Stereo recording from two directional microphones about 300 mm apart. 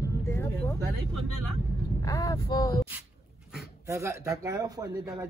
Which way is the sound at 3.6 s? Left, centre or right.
Centre.